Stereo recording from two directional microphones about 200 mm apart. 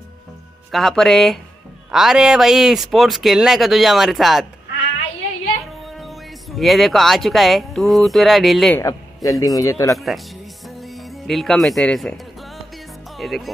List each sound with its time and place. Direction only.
0.7 s speech: centre (ahead or behind)
5.9 s speech: centre (ahead or behind)
8.7 s a man's voice: 15° left (ahead or behind)
9.9 s speech: centre (ahead or behind)
13.2 s speech: centre (ahead or behind)